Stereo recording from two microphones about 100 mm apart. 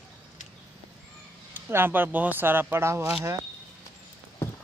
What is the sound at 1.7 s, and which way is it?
Speech, 20° right (ahead or behind).